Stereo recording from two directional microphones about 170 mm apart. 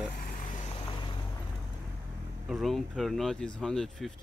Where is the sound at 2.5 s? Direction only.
Centre (ahead or behind).